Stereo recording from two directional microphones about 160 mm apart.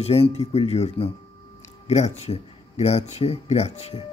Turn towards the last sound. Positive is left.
turn(degrees=40)  # may be behind; listen again after turning